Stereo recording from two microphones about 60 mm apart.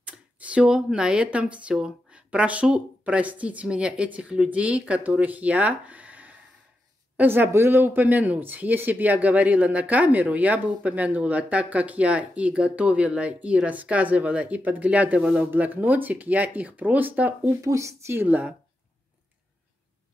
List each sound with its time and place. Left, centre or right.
0.0 s a sound: right
0.6 s speech: centre
7.2 s speech: right; by 15.4 s centre
15.5 s speech: right
17.6 s speech: right
18.1 s speech: right